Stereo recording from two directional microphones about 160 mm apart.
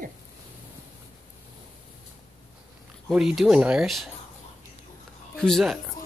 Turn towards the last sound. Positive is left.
turn(degrees=0)  # may be behind; listen again after turning